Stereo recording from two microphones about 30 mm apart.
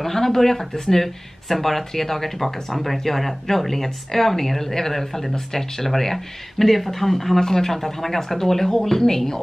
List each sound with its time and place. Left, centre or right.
0.0 s speech: centre